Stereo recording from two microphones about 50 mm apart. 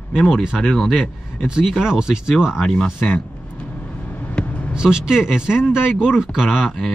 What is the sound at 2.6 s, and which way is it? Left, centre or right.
Speech, centre.